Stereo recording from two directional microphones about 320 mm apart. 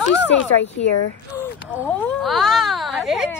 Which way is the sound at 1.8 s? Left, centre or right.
Centre.